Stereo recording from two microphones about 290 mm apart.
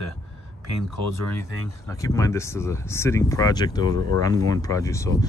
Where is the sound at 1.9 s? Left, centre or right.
Centre.